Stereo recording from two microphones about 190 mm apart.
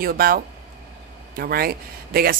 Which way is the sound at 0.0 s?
50° right (ahead or behind).